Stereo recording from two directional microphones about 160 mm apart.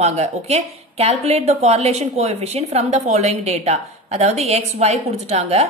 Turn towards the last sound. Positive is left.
turn(degrees=-40)  # may be behind; listen again after turning